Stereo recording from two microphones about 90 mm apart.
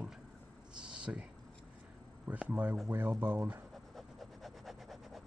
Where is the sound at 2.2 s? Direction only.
15° right (ahead or behind).